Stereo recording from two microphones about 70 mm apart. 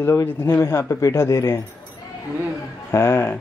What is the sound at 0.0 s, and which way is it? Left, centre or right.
A man's voice, left.